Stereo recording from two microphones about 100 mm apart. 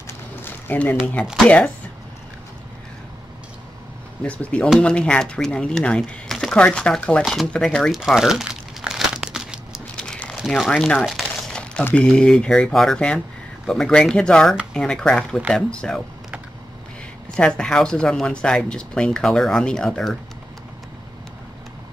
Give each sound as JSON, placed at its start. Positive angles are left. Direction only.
{"t": 0.4, "sound": "a sound", "side_deg": 20}
{"t": 1.2, "sound": "speech", "side_deg": 0}
{"t": 4.2, "sound": "speech", "side_deg": 15}
{"t": 7.9, "sound": "crumpling", "side_deg": -5}
{"t": 10.0, "sound": "a sound", "side_deg": 10}
{"t": 10.4, "sound": "speech", "side_deg": 0}
{"t": 17.4, "sound": "speech", "side_deg": 5}